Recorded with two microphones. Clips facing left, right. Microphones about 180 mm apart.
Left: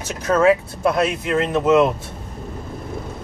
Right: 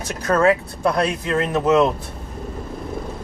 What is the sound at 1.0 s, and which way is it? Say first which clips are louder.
Speech: left 1 dB; 10° left (ahead or behind).